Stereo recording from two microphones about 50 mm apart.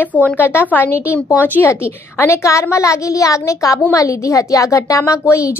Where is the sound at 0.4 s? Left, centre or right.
Left.